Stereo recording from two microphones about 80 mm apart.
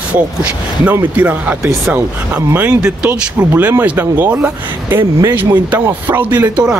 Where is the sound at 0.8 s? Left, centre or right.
Right.